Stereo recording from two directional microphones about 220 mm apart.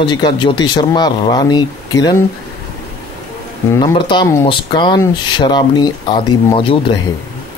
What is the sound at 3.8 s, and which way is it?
Speech, 20° left (ahead or behind).